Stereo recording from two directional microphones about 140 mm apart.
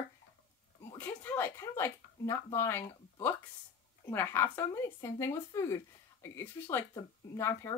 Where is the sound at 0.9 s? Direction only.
10° left (ahead or behind).